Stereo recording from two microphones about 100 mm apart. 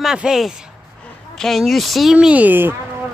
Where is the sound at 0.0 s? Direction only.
5° right (ahead or behind).